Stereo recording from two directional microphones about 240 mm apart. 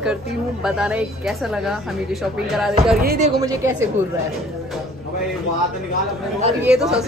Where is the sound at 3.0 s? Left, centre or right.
Right.